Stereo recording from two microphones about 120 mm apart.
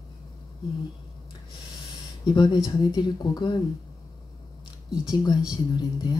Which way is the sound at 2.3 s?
40° left (ahead or behind).